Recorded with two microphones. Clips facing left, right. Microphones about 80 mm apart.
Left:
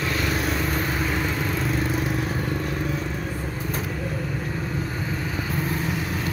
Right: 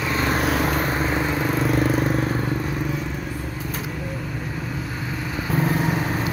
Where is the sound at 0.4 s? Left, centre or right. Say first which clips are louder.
Right 4 dB; right.